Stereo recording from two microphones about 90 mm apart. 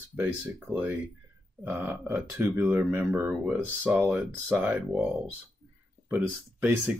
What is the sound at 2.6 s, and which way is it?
Speech, 20° right (ahead or behind).